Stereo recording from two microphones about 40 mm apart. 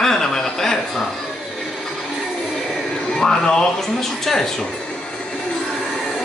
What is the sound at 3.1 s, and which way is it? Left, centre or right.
Speech, centre.